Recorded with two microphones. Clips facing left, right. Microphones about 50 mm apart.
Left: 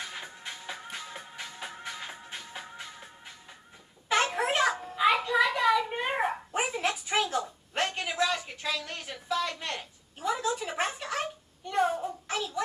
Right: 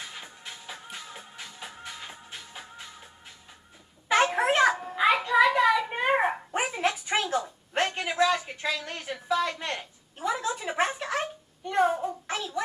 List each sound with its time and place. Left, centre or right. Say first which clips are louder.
0.1 s music: left 2 dB; centre
4.2 s babbling: right 5 dB; centre
4.5 s music: right 4 dB; centre
4.9 s a sound: even; centre